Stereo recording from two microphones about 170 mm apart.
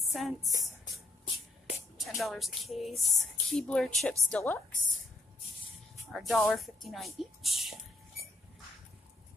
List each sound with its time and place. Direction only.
0.0 s music: centre (ahead or behind)
0.5 s a sound: 25° left (ahead or behind)
2.0 s speech: centre (ahead or behind)
6.1 s speech: centre (ahead or behind)